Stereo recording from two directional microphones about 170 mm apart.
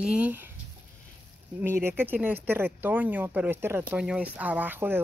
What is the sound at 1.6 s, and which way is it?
Speech, 15° right (ahead or behind).